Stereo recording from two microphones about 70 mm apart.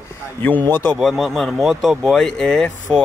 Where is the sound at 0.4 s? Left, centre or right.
Left.